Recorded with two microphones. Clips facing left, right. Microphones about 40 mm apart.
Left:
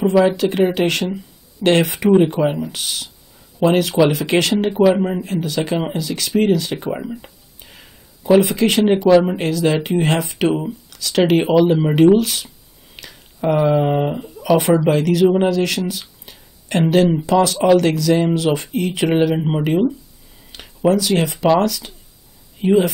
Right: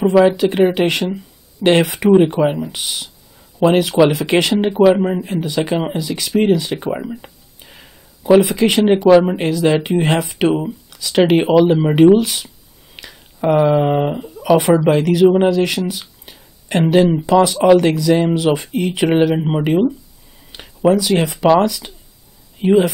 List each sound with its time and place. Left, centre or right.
0.0 s speech: centre
5.2 s speech: centre